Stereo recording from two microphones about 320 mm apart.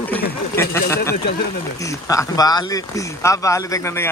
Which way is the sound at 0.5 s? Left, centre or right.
Centre.